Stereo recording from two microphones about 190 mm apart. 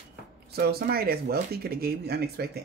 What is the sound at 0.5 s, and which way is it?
Speech, 55° right (ahead or behind).